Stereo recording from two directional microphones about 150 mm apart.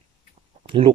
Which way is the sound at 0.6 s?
35° right (ahead or behind).